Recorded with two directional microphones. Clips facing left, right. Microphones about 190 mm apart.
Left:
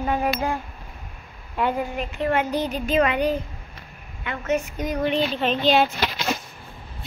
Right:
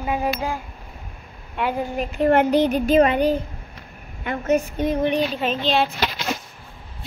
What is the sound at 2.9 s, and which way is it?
Speech, 35° right (ahead or behind).